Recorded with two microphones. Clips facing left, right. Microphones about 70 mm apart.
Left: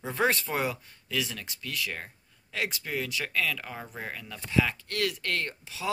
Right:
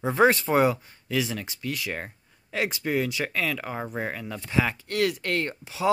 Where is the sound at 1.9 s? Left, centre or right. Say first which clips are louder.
Right 5 dB; right.